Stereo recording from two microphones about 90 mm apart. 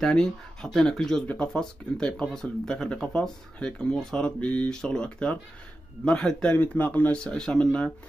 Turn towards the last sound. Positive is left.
turn(degrees=10)  # may be behind; listen again after turning